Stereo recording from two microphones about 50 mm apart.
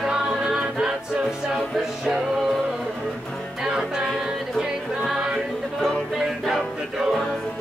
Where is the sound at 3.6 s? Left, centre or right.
Centre.